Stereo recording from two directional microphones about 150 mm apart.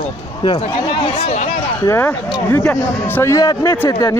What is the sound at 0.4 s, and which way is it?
Speech, 35° left (ahead or behind).